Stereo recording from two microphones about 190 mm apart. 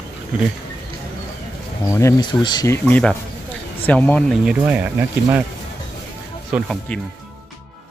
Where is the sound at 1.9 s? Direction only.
15° left (ahead or behind).